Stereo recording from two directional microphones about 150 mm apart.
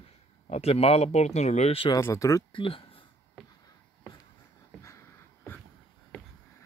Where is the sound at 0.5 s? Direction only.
45° left (ahead or behind).